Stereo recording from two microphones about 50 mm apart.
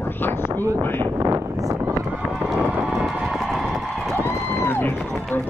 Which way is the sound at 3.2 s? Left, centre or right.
Centre.